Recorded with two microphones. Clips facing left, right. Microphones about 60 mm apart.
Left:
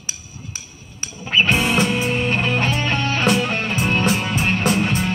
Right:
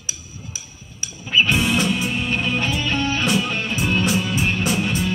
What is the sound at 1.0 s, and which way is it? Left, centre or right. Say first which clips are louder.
Music: left 1 dB; left.